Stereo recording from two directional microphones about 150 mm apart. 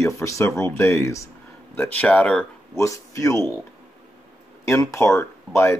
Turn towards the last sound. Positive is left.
turn(degrees=15)  # may be behind; listen again after turning